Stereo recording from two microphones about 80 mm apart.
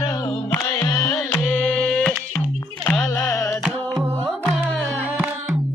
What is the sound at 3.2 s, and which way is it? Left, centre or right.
Music, left.